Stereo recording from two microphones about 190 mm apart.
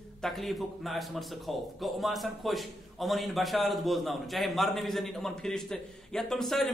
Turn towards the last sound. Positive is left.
turn(degrees=0)  # may be behind; listen again after turning